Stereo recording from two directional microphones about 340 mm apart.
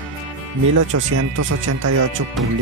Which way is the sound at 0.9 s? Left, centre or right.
Right.